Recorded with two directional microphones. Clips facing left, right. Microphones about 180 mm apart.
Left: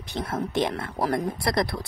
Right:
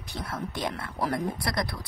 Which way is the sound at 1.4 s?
25° left (ahead or behind).